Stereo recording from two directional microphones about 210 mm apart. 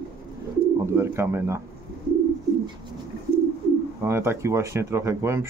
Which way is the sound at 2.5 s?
20° right (ahead or behind).